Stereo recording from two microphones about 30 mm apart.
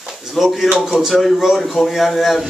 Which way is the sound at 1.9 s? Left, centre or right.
Centre.